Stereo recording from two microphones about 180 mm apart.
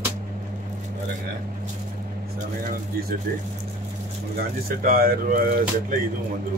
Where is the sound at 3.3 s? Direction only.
55° right (ahead or behind).